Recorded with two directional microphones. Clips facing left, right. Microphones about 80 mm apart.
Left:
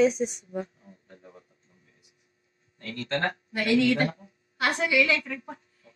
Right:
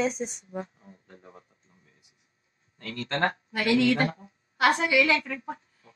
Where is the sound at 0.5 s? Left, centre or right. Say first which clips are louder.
Left 2 dB; right.